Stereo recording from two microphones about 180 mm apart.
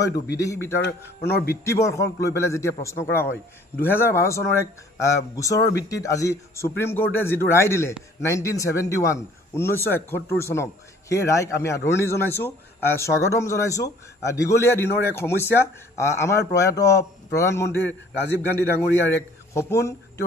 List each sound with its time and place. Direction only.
0.0 s a man's voice: 20° left (ahead or behind)